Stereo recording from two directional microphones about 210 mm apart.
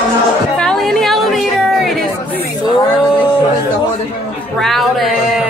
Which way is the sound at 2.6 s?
20° left (ahead or behind).